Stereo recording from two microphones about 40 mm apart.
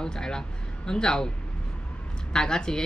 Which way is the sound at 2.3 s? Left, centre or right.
Centre.